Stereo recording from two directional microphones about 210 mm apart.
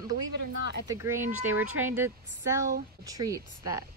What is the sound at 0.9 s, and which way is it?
A woman's voice, 15° right (ahead or behind).